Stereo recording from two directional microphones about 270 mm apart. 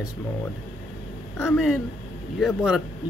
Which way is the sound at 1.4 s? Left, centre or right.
Centre.